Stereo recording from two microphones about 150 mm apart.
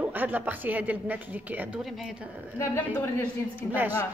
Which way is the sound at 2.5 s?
15° left (ahead or behind).